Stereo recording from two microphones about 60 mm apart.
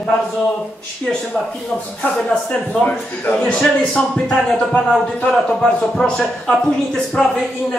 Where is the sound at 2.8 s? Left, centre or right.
Centre.